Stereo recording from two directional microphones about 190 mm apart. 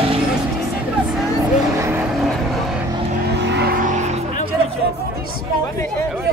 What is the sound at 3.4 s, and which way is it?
Vehicle, 65° right (ahead or behind).